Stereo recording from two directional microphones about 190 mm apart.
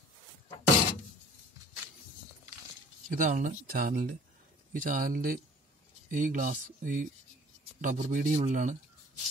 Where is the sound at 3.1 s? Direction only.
40° right (ahead or behind).